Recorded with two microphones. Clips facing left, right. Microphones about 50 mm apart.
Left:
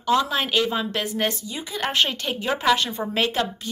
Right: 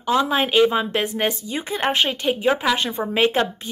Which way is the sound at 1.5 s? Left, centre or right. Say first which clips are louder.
Right 5 dB; right.